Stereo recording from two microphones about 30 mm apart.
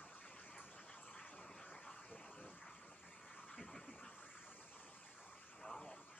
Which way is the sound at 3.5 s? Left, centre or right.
Centre.